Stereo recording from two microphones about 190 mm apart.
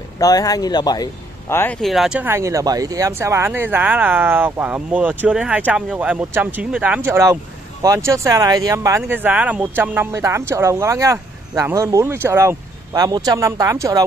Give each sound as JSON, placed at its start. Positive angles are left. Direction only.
{"t": 0.2, "sound": "speech", "side_deg": 20}